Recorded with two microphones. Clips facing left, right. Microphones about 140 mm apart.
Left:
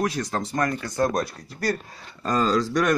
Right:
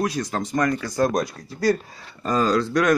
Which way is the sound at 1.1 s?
15° right (ahead or behind).